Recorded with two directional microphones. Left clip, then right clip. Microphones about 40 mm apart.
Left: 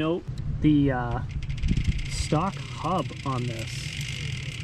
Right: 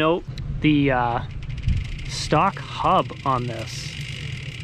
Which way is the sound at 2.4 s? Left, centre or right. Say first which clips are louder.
Right 9 dB; left.